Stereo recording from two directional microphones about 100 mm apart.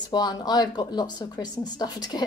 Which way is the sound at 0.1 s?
45° left (ahead or behind).